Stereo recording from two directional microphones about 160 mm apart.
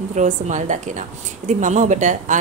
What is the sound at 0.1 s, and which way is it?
A woman's voice, 50° right (ahead or behind).